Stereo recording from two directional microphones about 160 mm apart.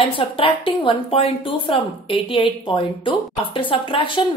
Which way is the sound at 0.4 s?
35° left (ahead or behind).